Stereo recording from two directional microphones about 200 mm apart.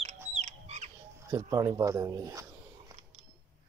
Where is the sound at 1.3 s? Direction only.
15° right (ahead or behind).